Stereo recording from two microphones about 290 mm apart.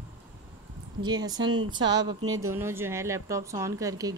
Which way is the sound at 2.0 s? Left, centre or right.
Centre.